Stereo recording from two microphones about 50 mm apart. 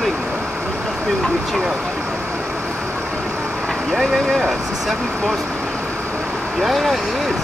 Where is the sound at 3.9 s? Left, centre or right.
Centre.